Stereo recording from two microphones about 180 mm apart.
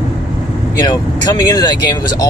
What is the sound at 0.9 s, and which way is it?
Speech, 20° left (ahead or behind).